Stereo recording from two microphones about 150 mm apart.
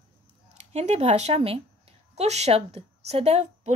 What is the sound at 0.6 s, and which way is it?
A woman's voice, 45° right (ahead or behind).